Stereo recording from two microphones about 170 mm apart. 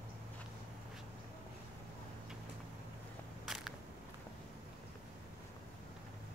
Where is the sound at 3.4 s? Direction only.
Centre (ahead or behind).